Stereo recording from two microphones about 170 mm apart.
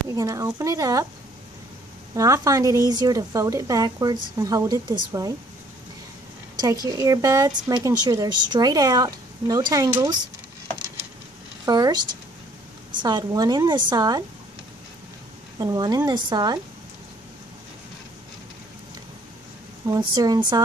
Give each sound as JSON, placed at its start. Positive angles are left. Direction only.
{"t": 0.1, "sound": "a woman's voice", "side_deg": -20}
{"t": 2.1, "sound": "a woman's voice", "side_deg": -20}
{"t": 6.5, "sound": "a woman's voice", "side_deg": -20}
{"t": 11.6, "sound": "speech", "side_deg": -25}
{"t": 13.0, "sound": "a woman's voice", "side_deg": -25}
{"t": 15.6, "sound": "a woman's voice", "side_deg": -20}
{"t": 19.9, "sound": "a woman's voice", "side_deg": -25}